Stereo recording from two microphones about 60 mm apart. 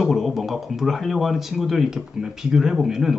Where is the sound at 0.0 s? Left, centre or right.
Centre.